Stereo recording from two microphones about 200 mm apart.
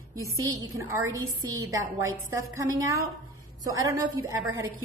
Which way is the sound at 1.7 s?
15° right (ahead or behind).